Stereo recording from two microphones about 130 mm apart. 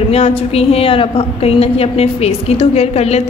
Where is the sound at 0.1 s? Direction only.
50° left (ahead or behind).